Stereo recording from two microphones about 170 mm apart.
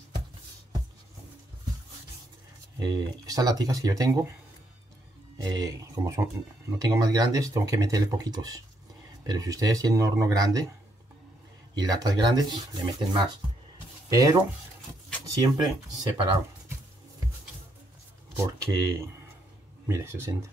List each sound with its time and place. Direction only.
2.8 s speech: 25° right (ahead or behind)
5.4 s speech: 20° right (ahead or behind)
11.7 s speech: 25° right (ahead or behind)
18.4 s speech: 15° right (ahead or behind)